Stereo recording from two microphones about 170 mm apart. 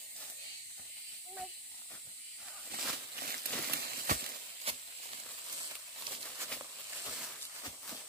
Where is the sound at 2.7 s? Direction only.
65° right (ahead or behind).